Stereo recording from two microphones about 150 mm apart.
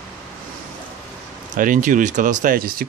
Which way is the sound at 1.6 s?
60° right (ahead or behind).